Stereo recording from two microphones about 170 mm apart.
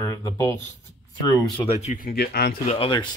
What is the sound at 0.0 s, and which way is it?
Speech, 20° left (ahead or behind).